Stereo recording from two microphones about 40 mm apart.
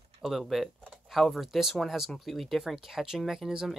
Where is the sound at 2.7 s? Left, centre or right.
Centre.